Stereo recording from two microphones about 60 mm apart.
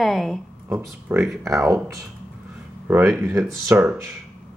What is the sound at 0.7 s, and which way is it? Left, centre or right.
Speech, right.